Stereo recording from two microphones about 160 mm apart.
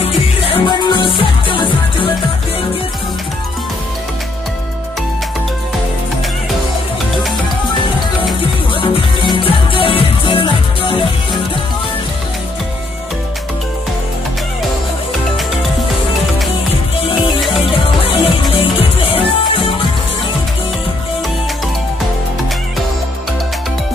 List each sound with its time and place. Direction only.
0.0 s music: 35° left (ahead or behind)
9.3 s music: 30° left (ahead or behind)
17.5 s music: 35° left (ahead or behind)